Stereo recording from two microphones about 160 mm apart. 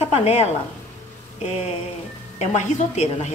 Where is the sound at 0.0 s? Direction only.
40° left (ahead or behind).